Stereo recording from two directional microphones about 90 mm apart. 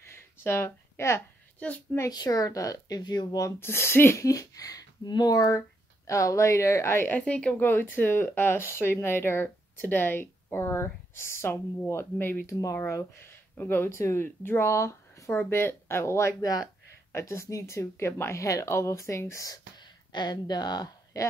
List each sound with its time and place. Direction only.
0.0 s a sound: 25° left (ahead or behind)
2.0 s a woman's voice: 45° left (ahead or behind)
3.0 s a woman's voice: 50° left (ahead or behind)
3.5 s speech: 25° left (ahead or behind)
7.1 s speech: 15° left (ahead or behind); by 19.6 s 35° left (ahead or behind)
19.8 s a sound: 55° left (ahead or behind)